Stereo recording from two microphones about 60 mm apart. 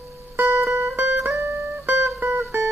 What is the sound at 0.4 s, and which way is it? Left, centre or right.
Music, right.